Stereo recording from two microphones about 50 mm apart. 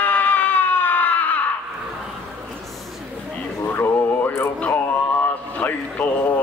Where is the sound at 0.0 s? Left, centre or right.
Left.